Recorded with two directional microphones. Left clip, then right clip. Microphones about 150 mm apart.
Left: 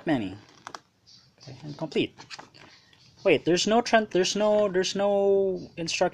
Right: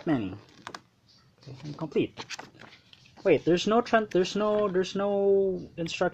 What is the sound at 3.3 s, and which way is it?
Speech, 5° left (ahead or behind).